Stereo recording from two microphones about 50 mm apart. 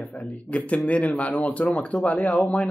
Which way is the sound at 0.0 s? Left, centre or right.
Left.